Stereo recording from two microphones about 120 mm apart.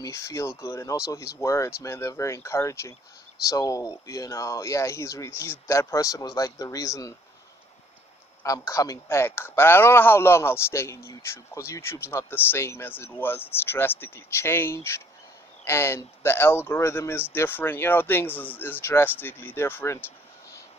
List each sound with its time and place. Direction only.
0.0 s a man's voice: 25° left (ahead or behind)
8.4 s a man's voice: 30° left (ahead or behind)